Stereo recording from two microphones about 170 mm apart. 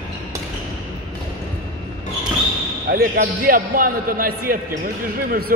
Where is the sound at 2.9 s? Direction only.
60° right (ahead or behind).